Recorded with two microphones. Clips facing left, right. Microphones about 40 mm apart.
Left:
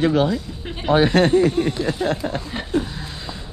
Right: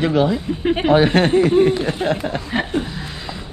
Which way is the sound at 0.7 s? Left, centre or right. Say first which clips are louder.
Right 3 dB; right.